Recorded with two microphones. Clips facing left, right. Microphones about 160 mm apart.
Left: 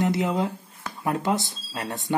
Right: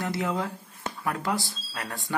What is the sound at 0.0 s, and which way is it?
Speech, 20° left (ahead or behind).